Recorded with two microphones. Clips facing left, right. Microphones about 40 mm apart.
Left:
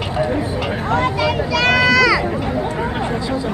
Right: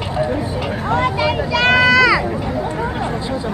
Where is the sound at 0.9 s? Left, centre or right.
Right.